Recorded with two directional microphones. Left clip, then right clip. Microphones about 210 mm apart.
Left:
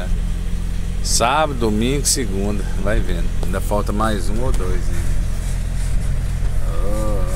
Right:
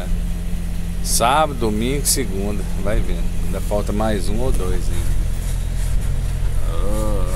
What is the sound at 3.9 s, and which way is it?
Speech, 5° right (ahead or behind).